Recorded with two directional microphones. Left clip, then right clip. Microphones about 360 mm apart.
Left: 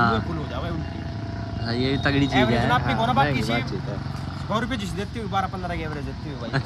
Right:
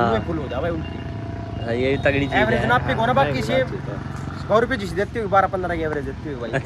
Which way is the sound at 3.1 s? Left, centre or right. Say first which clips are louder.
Right 3 dB; left.